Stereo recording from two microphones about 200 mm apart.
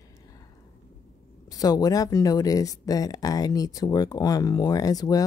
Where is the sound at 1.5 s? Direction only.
20° left (ahead or behind).